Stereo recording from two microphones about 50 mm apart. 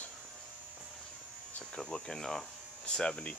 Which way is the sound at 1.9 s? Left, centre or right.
Centre.